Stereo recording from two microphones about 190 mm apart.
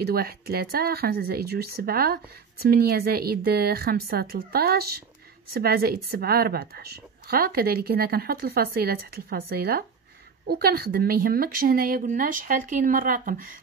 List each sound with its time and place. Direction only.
0.0 s a woman's voice: 55° right (ahead or behind)